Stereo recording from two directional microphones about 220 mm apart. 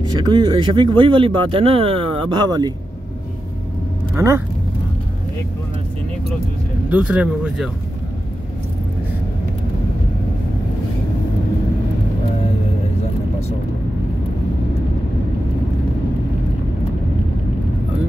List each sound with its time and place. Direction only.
0.1 s speech: 20° right (ahead or behind)
4.1 s speech: 10° right (ahead or behind)
6.9 s speech: 5° right (ahead or behind)